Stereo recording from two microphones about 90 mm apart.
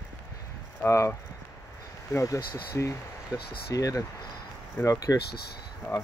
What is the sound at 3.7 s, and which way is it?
Speech, 40° left (ahead or behind).